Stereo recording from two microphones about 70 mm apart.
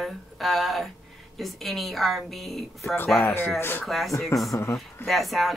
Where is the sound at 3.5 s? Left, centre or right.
Left.